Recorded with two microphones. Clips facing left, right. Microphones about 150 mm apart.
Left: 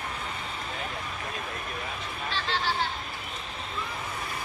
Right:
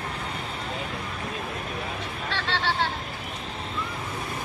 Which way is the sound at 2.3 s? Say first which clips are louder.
Right 2 dB; 70° right (ahead or behind).